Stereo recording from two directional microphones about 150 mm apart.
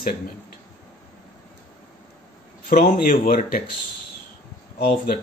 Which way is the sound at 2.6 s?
80° left.